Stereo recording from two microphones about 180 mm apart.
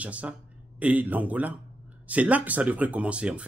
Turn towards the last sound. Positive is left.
turn(degrees=-5)  # may be behind; listen again after turning